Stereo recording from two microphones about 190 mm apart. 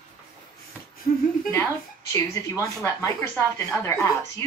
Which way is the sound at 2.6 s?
15° left (ahead or behind).